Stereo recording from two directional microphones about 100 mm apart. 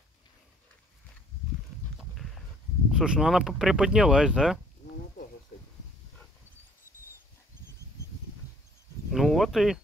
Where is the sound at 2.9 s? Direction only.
5° right (ahead or behind).